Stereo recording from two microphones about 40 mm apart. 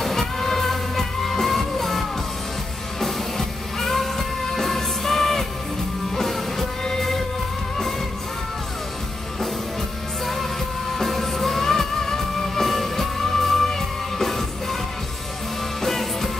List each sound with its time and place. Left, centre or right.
0.0 s music: centre
11.0 s music: centre
15.8 s music: centre